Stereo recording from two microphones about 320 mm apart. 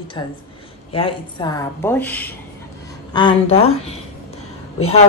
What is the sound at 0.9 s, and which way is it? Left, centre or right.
Speech, centre.